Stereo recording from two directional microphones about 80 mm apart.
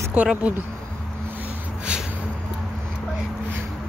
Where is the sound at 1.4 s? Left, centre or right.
Centre.